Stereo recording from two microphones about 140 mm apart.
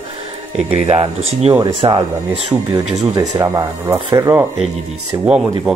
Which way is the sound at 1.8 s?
35° right (ahead or behind).